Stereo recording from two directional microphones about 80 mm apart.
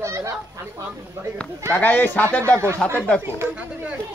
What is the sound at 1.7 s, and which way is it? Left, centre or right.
Speech, left.